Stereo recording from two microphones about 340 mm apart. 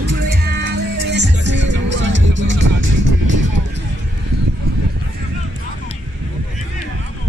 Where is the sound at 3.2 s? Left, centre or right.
Right.